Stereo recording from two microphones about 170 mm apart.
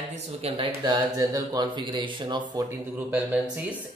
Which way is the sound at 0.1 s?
35° right (ahead or behind).